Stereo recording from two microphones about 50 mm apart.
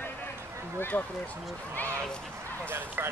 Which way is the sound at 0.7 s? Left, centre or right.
Left.